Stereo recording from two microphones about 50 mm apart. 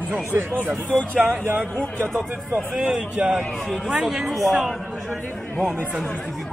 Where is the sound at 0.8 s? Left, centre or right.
Left.